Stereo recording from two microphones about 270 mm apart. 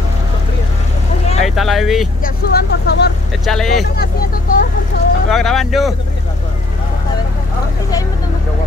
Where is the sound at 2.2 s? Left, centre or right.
Left.